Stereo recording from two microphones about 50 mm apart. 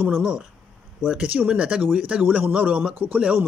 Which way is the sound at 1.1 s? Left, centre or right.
Right.